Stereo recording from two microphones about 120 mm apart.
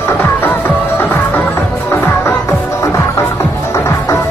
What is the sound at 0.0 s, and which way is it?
Music, 20° left (ahead or behind).